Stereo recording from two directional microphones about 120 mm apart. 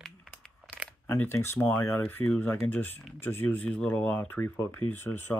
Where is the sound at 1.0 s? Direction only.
15° left (ahead or behind).